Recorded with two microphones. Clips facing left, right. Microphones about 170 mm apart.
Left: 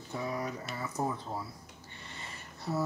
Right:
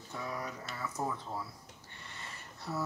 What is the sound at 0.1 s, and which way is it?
Speech, 15° left (ahead or behind).